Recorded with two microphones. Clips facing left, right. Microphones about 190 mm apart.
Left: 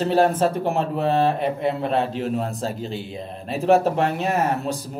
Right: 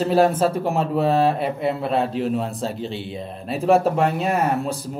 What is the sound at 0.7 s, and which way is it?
Speech, 35° right (ahead or behind).